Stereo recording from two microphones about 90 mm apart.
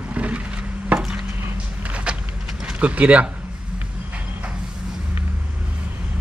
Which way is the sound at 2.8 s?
15° right (ahead or behind).